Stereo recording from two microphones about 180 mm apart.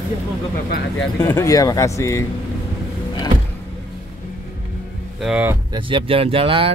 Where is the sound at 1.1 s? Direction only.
15° left (ahead or behind).